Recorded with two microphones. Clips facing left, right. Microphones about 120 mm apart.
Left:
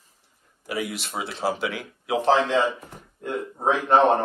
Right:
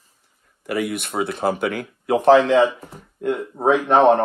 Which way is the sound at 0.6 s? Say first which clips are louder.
Right 6 dB; 55° right (ahead or behind).